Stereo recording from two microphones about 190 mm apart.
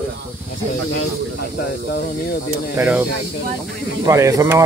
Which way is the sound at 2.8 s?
10° right (ahead or behind).